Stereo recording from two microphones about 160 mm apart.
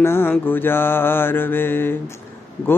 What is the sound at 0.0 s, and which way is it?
Mantra, 15° left (ahead or behind).